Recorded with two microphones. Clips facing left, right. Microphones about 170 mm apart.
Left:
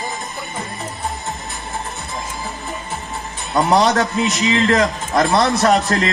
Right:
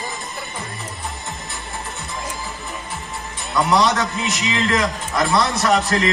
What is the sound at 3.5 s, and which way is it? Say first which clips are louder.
Speech: left 2 dB; 40° left (ahead or behind).